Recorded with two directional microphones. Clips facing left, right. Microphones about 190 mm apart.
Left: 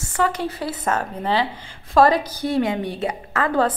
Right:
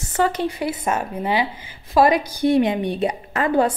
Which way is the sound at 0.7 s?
10° right (ahead or behind).